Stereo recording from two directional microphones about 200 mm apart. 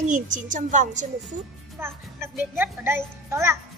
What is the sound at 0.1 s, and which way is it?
Speech, 40° right (ahead or behind).